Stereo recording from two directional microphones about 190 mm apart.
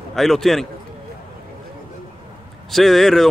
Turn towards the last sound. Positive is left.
turn(degrees=0)  # may be behind; listen again after turning